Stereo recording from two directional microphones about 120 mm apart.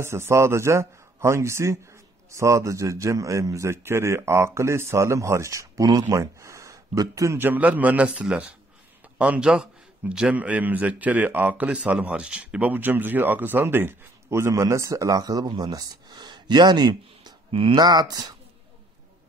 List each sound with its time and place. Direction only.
0.0 s a man's voice: 20° right (ahead or behind)
17.5 s speech: 45° right (ahead or behind)